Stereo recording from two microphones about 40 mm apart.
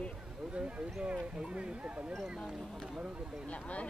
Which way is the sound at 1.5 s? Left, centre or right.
Right.